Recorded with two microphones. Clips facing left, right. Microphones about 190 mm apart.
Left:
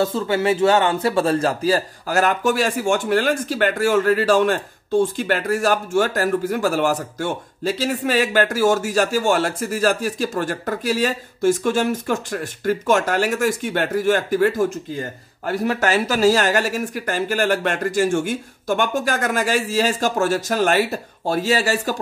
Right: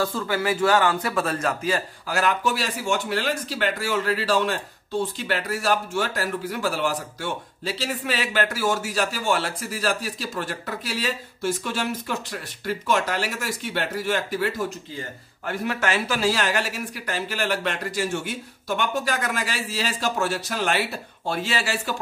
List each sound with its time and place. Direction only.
0.0 s a man's voice: 25° left (ahead or behind); by 21.9 s 40° left (ahead or behind)